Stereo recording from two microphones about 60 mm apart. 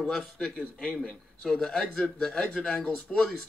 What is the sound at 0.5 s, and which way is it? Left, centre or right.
Speech, centre.